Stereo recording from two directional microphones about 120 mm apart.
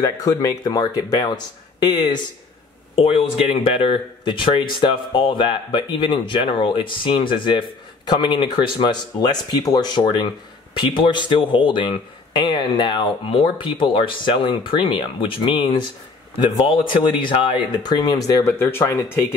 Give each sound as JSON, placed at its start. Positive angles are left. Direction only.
{"t": 0.0, "sound": "speech", "side_deg": 30}
{"t": 3.0, "sound": "speech", "side_deg": 50}
{"t": 18.6, "sound": "speech", "side_deg": 20}